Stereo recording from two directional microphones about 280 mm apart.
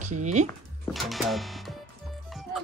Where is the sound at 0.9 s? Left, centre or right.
Centre.